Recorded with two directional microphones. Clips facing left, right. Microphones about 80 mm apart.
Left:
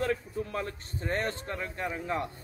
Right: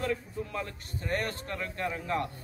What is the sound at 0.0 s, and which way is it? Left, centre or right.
A man's voice, left.